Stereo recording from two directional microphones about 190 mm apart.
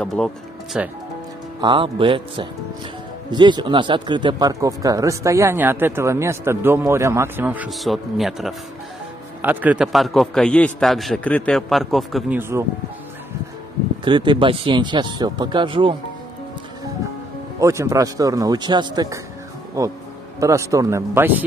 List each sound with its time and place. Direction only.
0.0 s a man's voice: centre (ahead or behind)
1.6 s a man's voice: 25° right (ahead or behind); by 12.4 s centre (ahead or behind)
12.4 s speech: 15° right (ahead or behind)
14.0 s speech: 25° right (ahead or behind)
17.6 s speech: 15° right (ahead or behind)